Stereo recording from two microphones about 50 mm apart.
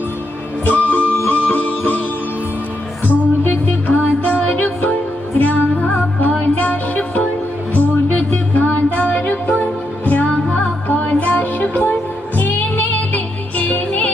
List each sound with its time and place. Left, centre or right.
0.7 s music: left
3.1 s music: left